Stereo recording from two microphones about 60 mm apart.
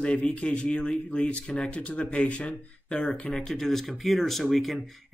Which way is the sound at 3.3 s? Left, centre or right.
Centre.